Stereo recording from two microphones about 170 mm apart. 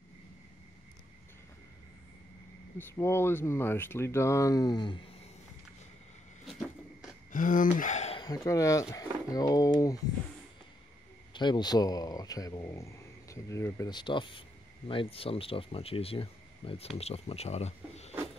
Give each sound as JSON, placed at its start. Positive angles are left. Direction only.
{"t": 2.8, "sound": "speech", "side_deg": 15}
{"t": 7.3, "sound": "speech", "side_deg": 50}
{"t": 8.2, "sound": "speech", "side_deg": 20}
{"t": 11.3, "sound": "speech", "side_deg": 25}